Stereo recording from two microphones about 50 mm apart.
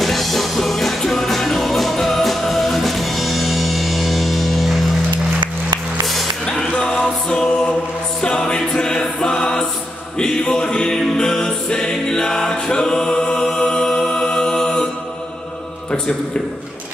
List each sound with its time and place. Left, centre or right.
0.0 s music: centre
6.4 s music: centre